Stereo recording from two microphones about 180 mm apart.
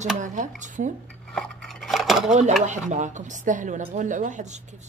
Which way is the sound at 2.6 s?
40° right (ahead or behind).